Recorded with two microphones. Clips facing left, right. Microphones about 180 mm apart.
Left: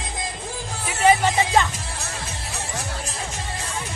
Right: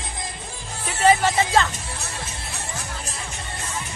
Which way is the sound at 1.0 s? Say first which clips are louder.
Even; 15° left (ahead or behind).